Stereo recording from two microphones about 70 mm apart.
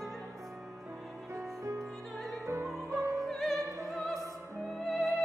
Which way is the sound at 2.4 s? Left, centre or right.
Right.